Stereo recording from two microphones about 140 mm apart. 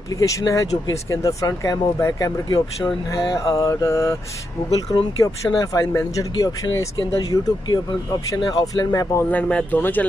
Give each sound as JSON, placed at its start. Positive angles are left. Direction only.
{"t": 0.2, "sound": "speech", "side_deg": 25}
{"t": 4.6, "sound": "speech", "side_deg": 45}
{"t": 5.2, "sound": "speech", "side_deg": 20}
{"t": 9.2, "sound": "speech", "side_deg": 10}